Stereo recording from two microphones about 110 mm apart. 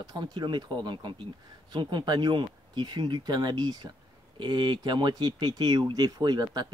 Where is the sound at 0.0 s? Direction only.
40° right (ahead or behind).